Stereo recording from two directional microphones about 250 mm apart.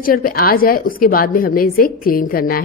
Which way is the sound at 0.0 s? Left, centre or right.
Left.